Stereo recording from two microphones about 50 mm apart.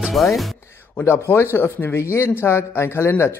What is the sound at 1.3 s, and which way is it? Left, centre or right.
Speech, left.